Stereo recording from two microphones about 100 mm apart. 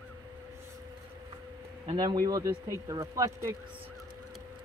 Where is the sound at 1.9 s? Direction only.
40° right (ahead or behind).